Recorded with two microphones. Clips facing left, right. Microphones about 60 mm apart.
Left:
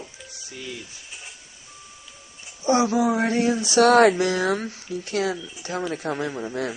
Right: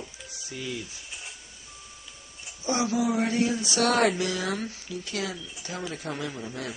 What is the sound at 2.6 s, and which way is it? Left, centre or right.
Speech, left.